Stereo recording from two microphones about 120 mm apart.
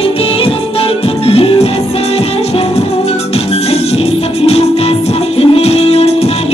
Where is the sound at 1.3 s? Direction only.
55° left (ahead or behind).